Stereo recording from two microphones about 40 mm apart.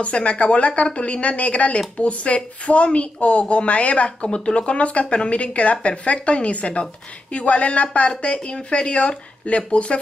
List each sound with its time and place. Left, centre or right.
0.0 s a woman's voice: left